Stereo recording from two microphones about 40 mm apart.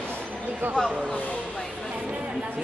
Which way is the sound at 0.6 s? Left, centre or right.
Right.